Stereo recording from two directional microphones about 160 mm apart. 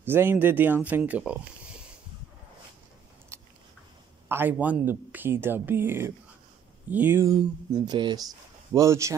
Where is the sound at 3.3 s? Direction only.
15° right (ahead or behind).